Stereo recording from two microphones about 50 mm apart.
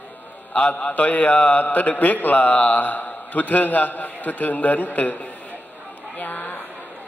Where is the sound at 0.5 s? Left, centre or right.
Left.